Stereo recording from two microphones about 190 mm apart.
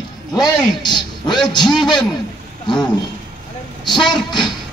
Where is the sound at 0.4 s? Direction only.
20° left (ahead or behind).